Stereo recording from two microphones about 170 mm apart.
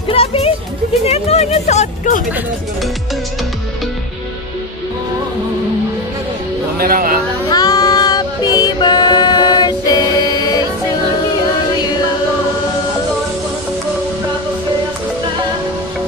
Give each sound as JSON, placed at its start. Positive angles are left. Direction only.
{"t": 0.1, "sound": "music", "side_deg": 35}
{"t": 6.8, "sound": "a sound", "side_deg": -55}
{"t": 7.4, "sound": "music", "side_deg": 20}